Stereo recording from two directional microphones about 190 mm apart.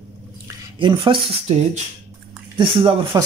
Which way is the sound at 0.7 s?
25° right (ahead or behind).